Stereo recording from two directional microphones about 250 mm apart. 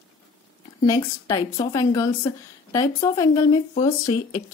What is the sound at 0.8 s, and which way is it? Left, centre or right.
A woman's voice, centre.